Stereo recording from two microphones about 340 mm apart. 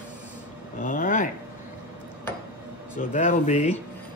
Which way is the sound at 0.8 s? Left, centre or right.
Left.